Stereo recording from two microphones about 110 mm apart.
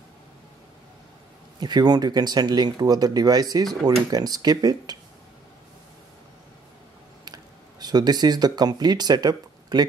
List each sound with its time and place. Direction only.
1.6 s speech: 40° right (ahead or behind)
7.8 s speech: 40° right (ahead or behind)